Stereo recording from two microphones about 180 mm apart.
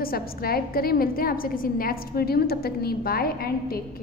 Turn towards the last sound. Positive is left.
turn(degrees=55)  # may be behind; listen again after turning